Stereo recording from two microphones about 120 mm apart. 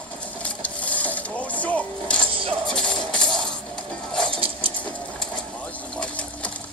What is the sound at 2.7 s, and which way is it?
Music, 5° left (ahead or behind).